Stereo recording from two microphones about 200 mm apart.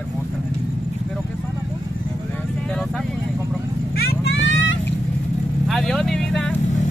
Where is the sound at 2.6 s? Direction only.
5° left (ahead or behind).